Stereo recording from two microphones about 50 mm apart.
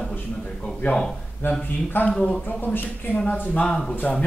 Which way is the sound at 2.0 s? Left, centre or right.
Centre.